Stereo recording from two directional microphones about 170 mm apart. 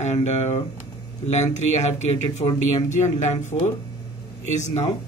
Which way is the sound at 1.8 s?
45° left (ahead or behind).